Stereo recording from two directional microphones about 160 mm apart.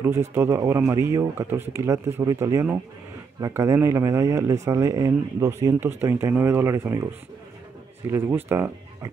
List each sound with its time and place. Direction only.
0.0 s speech: 15° right (ahead or behind)
8.0 s speech: 15° right (ahead or behind)